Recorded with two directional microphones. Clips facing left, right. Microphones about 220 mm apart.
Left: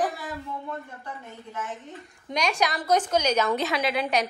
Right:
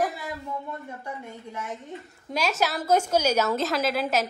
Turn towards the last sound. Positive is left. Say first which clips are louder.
# right 1 dB
turn(degrees=0)  # may be behind; listen again after turning